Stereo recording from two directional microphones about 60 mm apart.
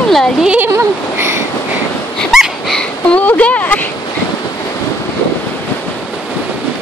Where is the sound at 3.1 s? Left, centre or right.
Left.